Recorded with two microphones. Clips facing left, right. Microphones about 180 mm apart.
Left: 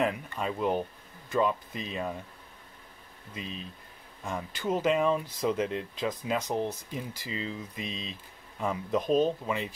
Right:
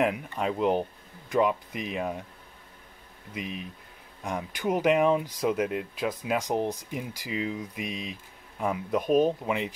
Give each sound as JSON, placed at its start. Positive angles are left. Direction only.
{"t": 0.0, "sound": "speech", "side_deg": -15}
{"t": 3.3, "sound": "speech", "side_deg": -15}